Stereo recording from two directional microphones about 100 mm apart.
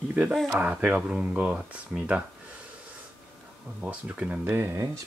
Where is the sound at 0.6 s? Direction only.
15° right (ahead or behind).